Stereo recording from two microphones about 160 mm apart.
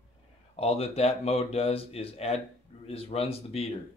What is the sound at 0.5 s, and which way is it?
Speech, 40° left (ahead or behind).